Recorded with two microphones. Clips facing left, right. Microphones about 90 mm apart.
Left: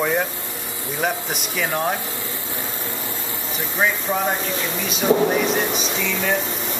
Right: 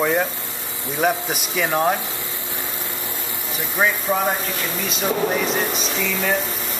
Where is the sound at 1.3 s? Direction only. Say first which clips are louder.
Right 2 dB; centre (ahead or behind).